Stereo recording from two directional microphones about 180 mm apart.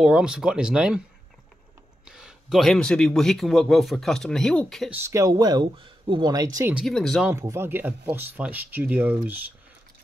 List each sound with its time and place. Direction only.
0.0 s a man's voice: 5° right (ahead or behind)
2.0 s a man's voice: 5° right (ahead or behind)
4.9 s speech: 15° right (ahead or behind)
6.7 s a man's voice: centre (ahead or behind)
7.2 s speech: 15° right (ahead or behind)